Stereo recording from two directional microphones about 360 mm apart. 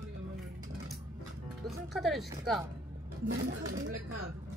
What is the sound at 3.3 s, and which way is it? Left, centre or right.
Speech, right.